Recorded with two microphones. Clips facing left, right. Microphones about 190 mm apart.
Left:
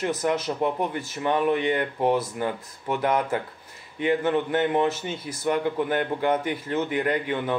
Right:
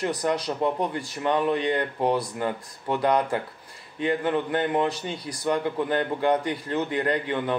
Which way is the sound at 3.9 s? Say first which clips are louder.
Left 2 dB; 15° left (ahead or behind).